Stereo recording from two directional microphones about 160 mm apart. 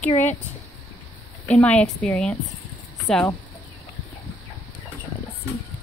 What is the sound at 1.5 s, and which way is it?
Speech, 5° left (ahead or behind).